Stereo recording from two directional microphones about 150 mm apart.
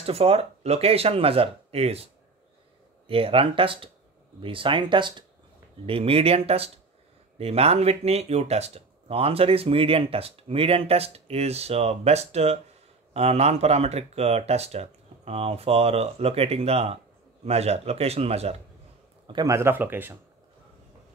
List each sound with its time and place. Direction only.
0.0 s speech: 40° right (ahead or behind)
3.1 s speech: 40° right (ahead or behind)
19.2 s speech: 25° right (ahead or behind)